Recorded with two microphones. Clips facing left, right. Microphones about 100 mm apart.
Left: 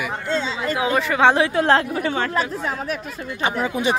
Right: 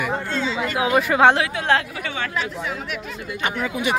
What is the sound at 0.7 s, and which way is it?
Speech, 15° right (ahead or behind).